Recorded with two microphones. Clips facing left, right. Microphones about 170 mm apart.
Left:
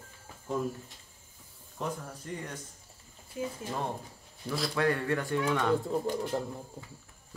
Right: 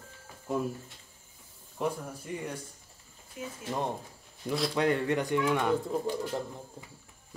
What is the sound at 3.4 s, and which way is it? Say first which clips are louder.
Speech: left 5 dB; 30° left (ahead or behind).